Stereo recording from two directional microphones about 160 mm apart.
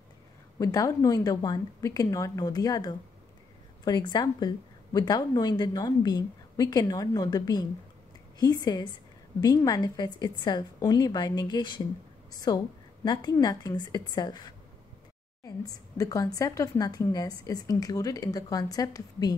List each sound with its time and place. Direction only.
0.6 s a woman's voice: 20° left (ahead or behind)